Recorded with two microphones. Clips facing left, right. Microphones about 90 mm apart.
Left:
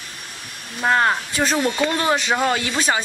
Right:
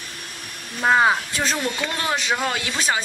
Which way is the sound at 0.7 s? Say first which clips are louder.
Right 1 dB; 5° right (ahead or behind).